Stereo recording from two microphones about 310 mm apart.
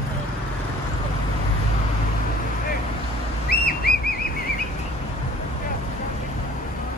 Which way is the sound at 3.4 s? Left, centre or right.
Left.